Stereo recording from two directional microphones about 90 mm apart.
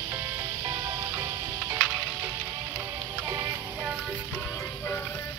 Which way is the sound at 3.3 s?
35° right (ahead or behind).